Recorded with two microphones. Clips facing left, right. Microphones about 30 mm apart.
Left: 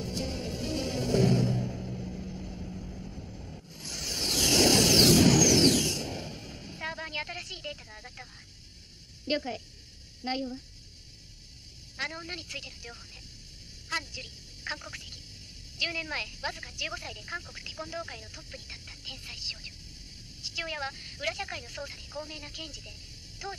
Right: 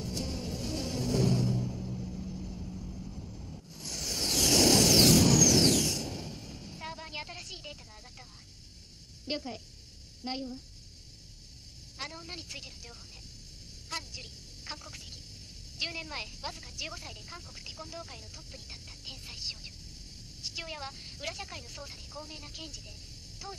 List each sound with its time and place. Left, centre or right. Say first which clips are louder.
0.0 s music: left 2 dB; left
9.3 s a sound: left 5 dB; left
10.2 s speech: left 4 dB; left
12.0 s a woman's voice: left 6 dB; left
13.8 s a sound: left 6 dB; left
15.8 s speech: left 5 dB; left